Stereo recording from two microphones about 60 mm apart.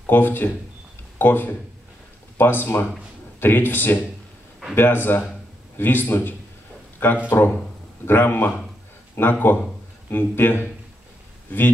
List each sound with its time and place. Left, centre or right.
0.0 s a man's voice: left